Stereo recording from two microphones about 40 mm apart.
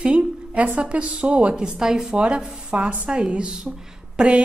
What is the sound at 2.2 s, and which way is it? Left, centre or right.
A woman's voice, right.